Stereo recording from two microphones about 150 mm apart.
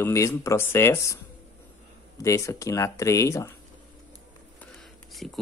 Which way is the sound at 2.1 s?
20° left (ahead or behind).